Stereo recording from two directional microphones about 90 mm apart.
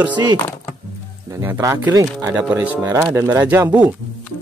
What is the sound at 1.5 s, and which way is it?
Speech, 40° right (ahead or behind).